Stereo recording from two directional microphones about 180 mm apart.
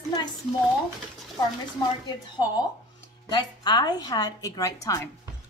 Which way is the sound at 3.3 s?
20° left (ahead or behind).